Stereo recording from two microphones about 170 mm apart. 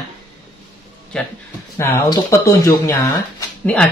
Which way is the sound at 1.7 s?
15° left (ahead or behind).